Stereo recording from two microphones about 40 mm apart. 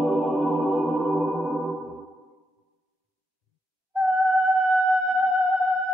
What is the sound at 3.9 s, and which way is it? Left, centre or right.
Music, centre.